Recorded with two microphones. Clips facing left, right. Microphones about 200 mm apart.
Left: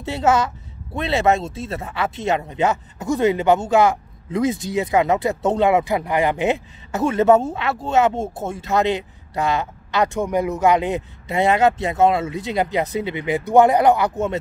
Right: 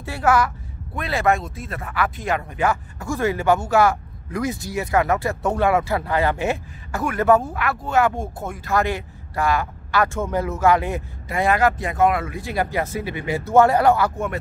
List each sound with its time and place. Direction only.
0.0 s speech: 20° left (ahead or behind)